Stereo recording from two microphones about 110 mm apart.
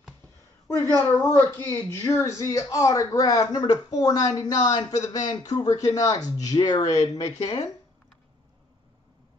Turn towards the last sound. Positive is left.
turn(degrees=35)  # may be behind; listen again after turning